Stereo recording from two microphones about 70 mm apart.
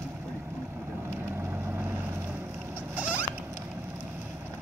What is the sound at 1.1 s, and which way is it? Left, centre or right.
Vehicle, right.